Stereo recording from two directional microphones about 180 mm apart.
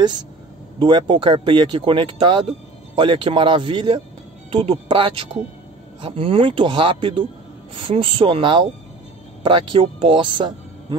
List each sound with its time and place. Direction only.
0.7 s speech: 25° right (ahead or behind)